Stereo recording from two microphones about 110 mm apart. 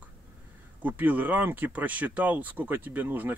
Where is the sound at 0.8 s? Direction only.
15° right (ahead or behind).